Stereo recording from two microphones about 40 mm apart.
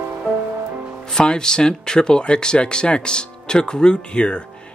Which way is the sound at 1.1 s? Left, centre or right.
Centre.